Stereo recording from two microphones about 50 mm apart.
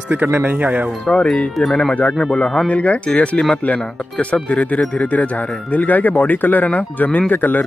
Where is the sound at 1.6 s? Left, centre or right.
Centre.